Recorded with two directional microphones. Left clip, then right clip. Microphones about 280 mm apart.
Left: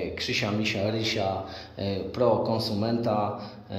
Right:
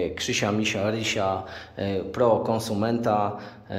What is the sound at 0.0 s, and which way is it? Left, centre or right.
A man's voice, right.